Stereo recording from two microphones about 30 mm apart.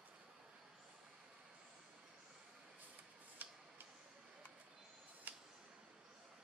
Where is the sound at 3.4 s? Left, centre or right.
Right.